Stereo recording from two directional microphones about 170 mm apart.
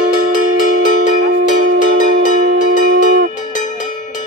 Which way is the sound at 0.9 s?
45° left (ahead or behind).